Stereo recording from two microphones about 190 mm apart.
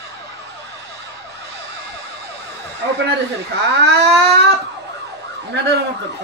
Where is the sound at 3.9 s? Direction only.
60° right (ahead or behind).